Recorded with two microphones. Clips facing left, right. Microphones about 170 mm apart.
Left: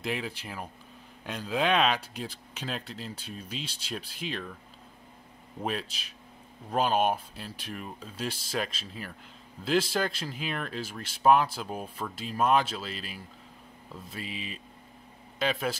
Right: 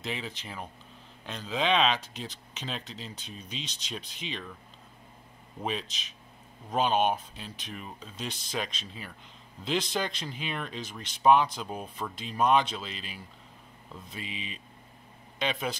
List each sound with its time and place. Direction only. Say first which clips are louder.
0.0 s speech: left 3 dB; 10° left (ahead or behind)
5.6 s a man's voice: left 1 dB; 5° left (ahead or behind)